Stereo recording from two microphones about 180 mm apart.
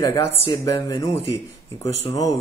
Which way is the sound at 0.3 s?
30° left (ahead or behind).